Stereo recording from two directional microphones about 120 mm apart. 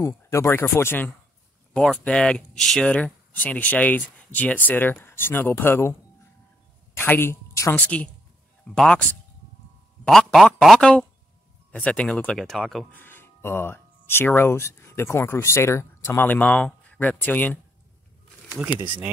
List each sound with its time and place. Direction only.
0.0 s speech: 25° left (ahead or behind)
1.7 s a woman's voice: 10° left (ahead or behind)
7.7 s speech: 10° left (ahead or behind)
10.0 s speech: 5° left (ahead or behind)
12.9 s speech: 15° left (ahead or behind)
18.6 s speech: 15° right (ahead or behind)